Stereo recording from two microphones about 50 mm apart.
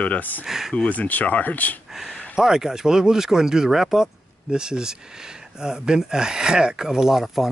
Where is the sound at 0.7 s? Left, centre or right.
Left.